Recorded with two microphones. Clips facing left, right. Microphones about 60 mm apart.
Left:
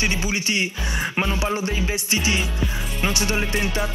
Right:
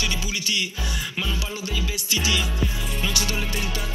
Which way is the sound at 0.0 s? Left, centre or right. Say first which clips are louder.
Left 4 dB; left.